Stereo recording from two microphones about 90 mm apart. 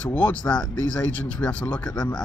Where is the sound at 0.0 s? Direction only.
15° left (ahead or behind).